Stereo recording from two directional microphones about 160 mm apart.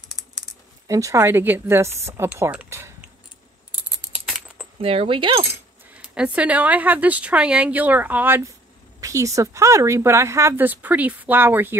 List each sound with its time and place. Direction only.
0.8 s speech: 20° right (ahead or behind)
3.7 s computer keyboard: 5° right (ahead or behind)
4.7 s speech: 35° right (ahead or behind)
5.9 s speech: 5° right (ahead or behind)